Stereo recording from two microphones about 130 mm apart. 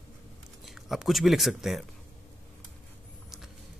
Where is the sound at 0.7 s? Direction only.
5° right (ahead or behind).